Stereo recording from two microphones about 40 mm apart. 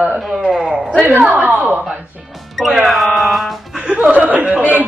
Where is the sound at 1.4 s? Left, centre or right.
Right.